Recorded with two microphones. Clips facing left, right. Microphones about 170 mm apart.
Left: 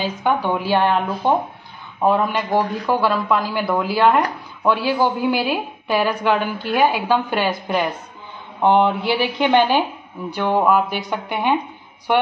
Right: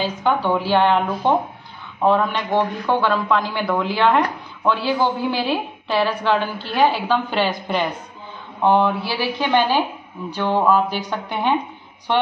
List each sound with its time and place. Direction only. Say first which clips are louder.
0.0 s a woman's voice: even; 15° left (ahead or behind)